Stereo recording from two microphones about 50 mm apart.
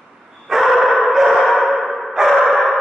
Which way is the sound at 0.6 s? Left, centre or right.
Centre.